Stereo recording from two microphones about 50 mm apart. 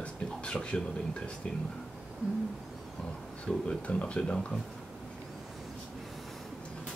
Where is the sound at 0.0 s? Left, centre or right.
Centre.